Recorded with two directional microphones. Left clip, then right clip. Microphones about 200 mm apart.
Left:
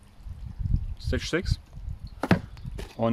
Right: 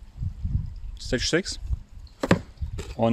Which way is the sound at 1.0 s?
25° right (ahead or behind).